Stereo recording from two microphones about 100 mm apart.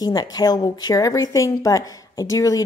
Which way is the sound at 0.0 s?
40° left (ahead or behind).